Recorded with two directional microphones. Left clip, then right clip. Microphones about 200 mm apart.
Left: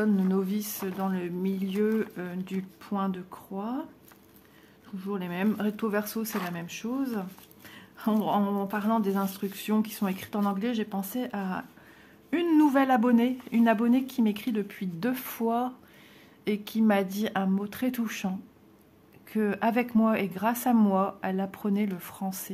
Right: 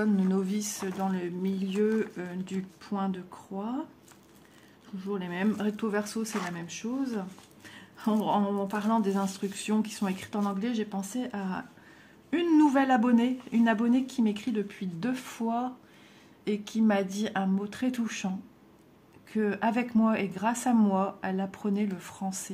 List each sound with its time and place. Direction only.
0.0 s speech: 15° left (ahead or behind)
4.9 s speech: 15° left (ahead or behind)
19.3 s speech: 20° left (ahead or behind)